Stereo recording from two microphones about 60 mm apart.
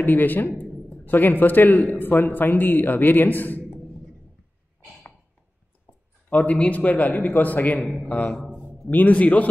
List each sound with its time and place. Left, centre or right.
0.0 s a man's voice: left
6.3 s a man's voice: left
8.2 s speech: centre
8.9 s a man's voice: left